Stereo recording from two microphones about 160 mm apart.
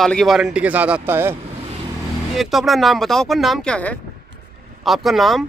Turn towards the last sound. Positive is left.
turn(degrees=0)  # may be behind; listen again after turning